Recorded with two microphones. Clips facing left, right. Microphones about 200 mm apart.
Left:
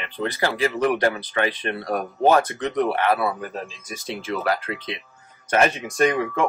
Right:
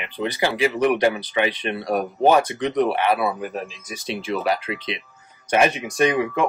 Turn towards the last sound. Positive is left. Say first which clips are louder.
# right 1 dB
turn(degrees=-15)  # may be behind; listen again after turning